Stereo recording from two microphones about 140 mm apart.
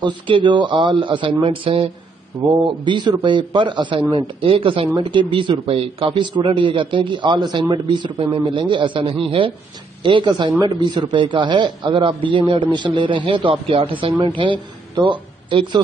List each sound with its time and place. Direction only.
0.0 s a man's voice: 35° right (ahead or behind)